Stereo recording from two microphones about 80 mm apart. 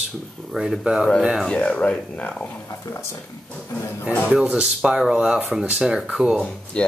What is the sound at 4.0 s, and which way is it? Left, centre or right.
Speech, left.